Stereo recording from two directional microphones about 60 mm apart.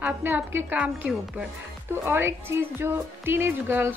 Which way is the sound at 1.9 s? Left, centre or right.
Right.